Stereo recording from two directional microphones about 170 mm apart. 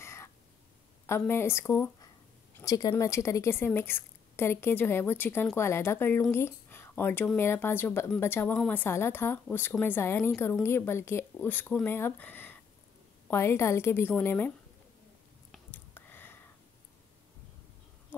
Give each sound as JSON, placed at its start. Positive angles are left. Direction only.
{"t": 0.0, "sound": "crow", "side_deg": 15}
{"t": 1.0, "sound": "a woman's voice", "side_deg": 15}
{"t": 15.7, "sound": "a sound", "side_deg": 10}